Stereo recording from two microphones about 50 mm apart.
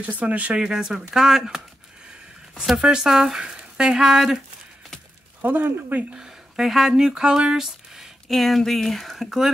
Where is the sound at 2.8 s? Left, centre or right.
Centre.